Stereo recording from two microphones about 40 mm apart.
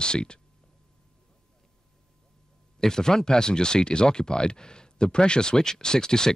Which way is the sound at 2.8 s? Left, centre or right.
Centre.